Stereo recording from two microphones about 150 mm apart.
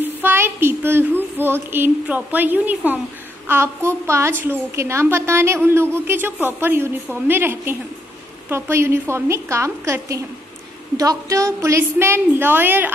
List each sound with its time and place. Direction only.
0.0 s a woman's voice: 15° right (ahead or behind)